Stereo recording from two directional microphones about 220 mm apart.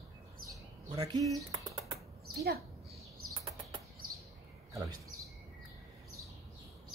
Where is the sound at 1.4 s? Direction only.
15° right (ahead or behind).